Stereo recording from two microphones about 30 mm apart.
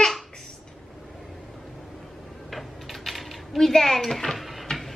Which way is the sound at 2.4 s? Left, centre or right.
Centre.